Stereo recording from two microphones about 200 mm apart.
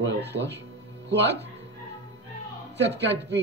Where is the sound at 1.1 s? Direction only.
60° right (ahead or behind).